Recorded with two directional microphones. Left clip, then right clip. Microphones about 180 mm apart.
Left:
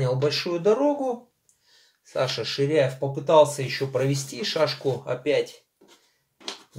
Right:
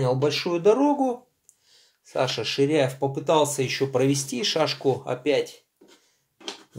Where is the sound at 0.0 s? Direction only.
25° right (ahead or behind).